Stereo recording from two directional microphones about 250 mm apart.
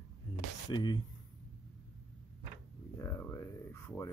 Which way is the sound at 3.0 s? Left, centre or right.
Centre.